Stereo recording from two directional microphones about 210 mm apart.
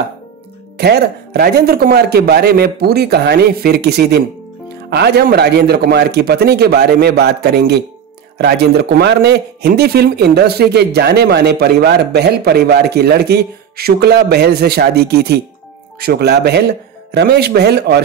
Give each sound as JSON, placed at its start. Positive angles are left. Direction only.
{"t": 0.7, "sound": "a man's voice", "side_deg": -50}